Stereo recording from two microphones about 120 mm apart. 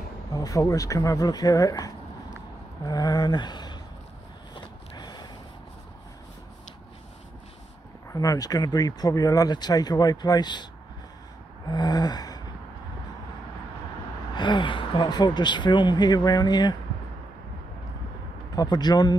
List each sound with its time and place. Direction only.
0.3 s speech: 30° left (ahead or behind)
4.6 s vehicle: 35° left (ahead or behind)
8.1 s speech: 30° left (ahead or behind)
11.6 s gasp: 35° left (ahead or behind)
14.3 s speech: 40° left (ahead or behind)
18.6 s speech: 35° left (ahead or behind)